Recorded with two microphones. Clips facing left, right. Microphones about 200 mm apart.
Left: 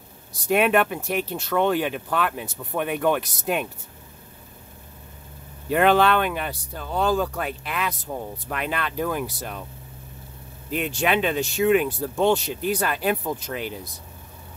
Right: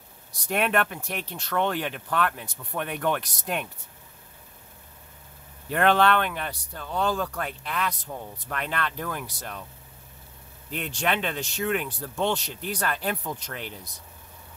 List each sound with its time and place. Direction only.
0.3 s speech: 10° left (ahead or behind)
5.7 s speech: 10° left (ahead or behind)
10.7 s speech: 10° left (ahead or behind)